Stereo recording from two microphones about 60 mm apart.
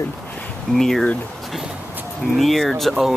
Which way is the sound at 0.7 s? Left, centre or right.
Centre.